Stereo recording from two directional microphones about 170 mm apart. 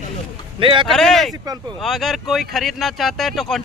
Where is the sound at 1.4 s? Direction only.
20° right (ahead or behind).